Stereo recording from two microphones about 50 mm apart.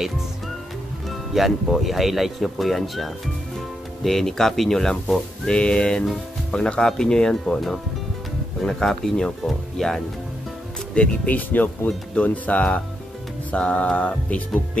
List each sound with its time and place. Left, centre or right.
1.3 s speech: centre
5.6 s a capella: centre
6.5 s speech: centre
11.2 s speech: left
12.2 s a capella: left